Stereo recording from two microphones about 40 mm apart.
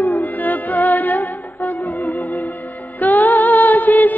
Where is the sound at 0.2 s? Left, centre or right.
Left.